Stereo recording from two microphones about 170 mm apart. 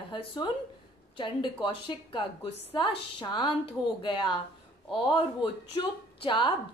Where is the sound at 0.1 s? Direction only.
30° left (ahead or behind).